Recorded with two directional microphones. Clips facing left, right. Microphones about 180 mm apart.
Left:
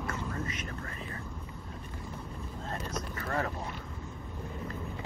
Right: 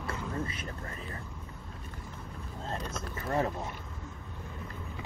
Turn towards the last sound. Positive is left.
turn(degrees=-20)  # may be behind; listen again after turning